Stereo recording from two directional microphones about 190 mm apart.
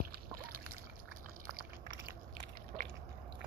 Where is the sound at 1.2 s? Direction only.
50° right (ahead or behind).